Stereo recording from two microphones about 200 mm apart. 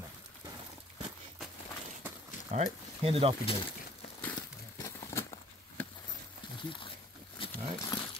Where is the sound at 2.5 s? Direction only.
30° right (ahead or behind).